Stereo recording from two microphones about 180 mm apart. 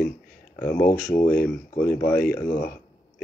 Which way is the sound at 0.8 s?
50° left (ahead or behind).